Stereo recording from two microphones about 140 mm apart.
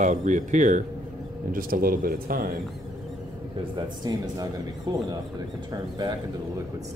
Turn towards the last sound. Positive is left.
turn(degrees=-30)  # may be behind; listen again after turning